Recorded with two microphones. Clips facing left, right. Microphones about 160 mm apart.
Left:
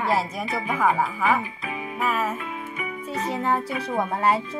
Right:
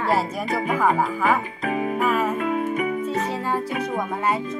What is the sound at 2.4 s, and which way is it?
Music, 45° right (ahead or behind).